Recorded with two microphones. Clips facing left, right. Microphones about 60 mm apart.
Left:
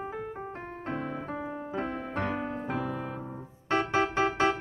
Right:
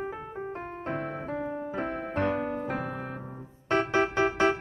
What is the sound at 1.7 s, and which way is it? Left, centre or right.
Music, right.